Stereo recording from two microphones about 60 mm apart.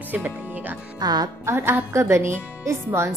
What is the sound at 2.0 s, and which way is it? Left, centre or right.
Speech, right.